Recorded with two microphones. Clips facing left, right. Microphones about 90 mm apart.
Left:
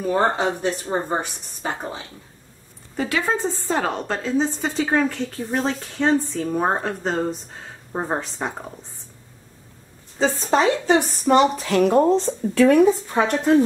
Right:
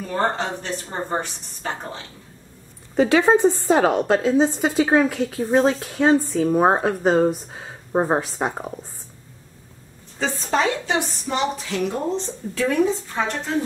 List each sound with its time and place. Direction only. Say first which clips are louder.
0.0 s a woman's voice: left 3 dB; 10° left (ahead or behind)
3.0 s a woman's voice: right 7 dB; 20° right (ahead or behind)
5.8 s a woman's voice: right 2 dB; 5° right (ahead or behind)
10.1 s a woman's voice: left 3 dB; 30° left (ahead or behind)
10.9 s a woman's voice: left 7 dB; 50° left (ahead or behind)